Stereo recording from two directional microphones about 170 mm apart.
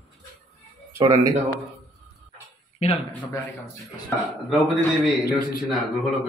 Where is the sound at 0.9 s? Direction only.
20° right (ahead or behind).